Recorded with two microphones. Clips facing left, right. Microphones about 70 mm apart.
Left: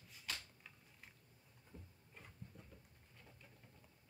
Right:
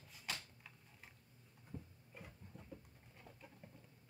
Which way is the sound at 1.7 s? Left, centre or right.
Right.